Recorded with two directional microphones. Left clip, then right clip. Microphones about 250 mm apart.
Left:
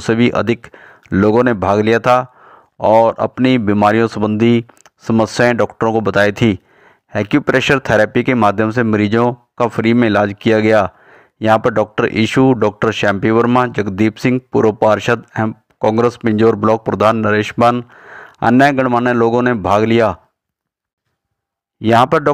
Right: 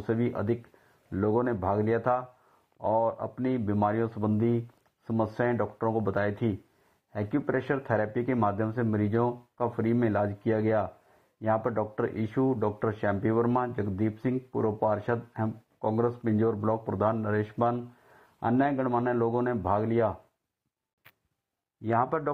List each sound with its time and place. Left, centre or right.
0.0 s speech: left
21.8 s speech: left